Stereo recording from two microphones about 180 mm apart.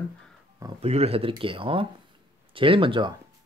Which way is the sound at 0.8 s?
35° right (ahead or behind).